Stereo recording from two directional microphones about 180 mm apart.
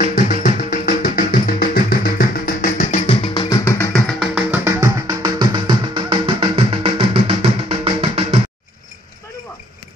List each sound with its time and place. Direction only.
0.3 s music: 45° left (ahead or behind)
3.4 s music: 15° left (ahead or behind)
4.2 s music: 10° right (ahead or behind)
4.7 s music: 20° right (ahead or behind)